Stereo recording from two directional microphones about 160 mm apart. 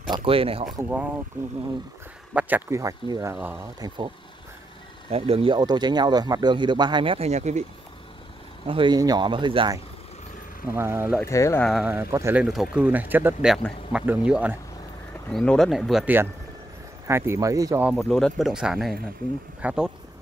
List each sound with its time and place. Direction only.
0.1 s speech: 35° right (ahead or behind)
0.8 s speech: 10° right (ahead or behind)
2.3 s speech: 15° right (ahead or behind)
5.1 s speech: 40° right (ahead or behind)
8.6 s speech: 30° right (ahead or behind)
10.7 s speech: 15° right (ahead or behind)
11.2 s speech: 20° left (ahead or behind)
11.8 s speech: 15° right (ahead or behind)
12.4 s speech: 5° right (ahead or behind)
15.3 s speech: 5° left (ahead or behind)
17.1 s speech: 15° right (ahead or behind)
17.8 s speech: 5° left (ahead or behind)